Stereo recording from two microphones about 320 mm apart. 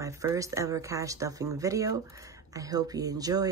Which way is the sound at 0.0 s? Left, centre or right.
Centre.